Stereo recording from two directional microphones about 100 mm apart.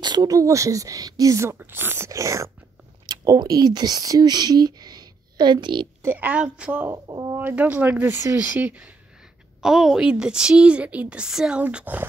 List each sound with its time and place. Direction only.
0.0 s speech: 45° right (ahead or behind); by 2.0 s 20° right (ahead or behind)
2.0 s speech: 30° right (ahead or behind); by 5.9 s 50° right (ahead or behind)
6.0 s a woman's voice: 15° right (ahead or behind)
7.1 s speech: 50° right (ahead or behind)
7.3 s a woman's voice: 15° right (ahead or behind)
9.6 s a woman's voice: 5° right (ahead or behind)